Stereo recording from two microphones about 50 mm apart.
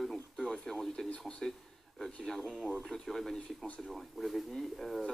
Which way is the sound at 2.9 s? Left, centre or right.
Centre.